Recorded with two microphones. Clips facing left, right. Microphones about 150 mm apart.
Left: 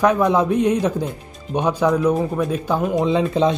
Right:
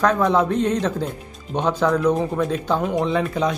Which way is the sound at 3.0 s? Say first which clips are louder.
Left 4 dB; 20° left (ahead or behind).